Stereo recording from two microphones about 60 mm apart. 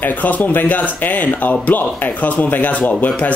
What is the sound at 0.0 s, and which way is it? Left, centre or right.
A man's voice, left.